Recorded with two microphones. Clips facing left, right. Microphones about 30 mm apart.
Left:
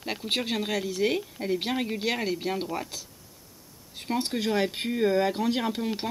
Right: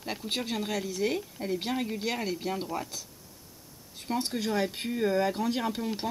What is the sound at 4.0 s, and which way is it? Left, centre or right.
Speech, left.